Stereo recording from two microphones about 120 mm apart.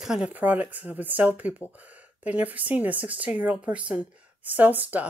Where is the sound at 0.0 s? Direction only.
5° right (ahead or behind).